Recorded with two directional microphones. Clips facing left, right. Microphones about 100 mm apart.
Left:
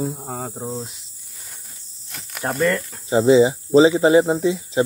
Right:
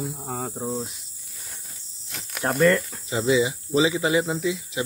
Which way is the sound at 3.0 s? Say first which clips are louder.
Left 8 dB; 30° left (ahead or behind).